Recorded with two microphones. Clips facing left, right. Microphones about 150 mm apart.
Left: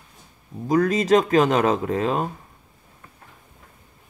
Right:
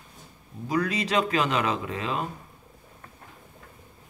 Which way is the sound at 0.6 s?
45° left (ahead or behind).